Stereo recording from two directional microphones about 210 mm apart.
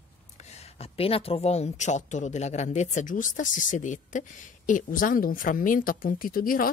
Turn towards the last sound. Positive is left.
turn(degrees=40)  # may be behind; listen again after turning